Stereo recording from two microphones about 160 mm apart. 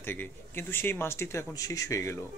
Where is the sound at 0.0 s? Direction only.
15° left (ahead or behind).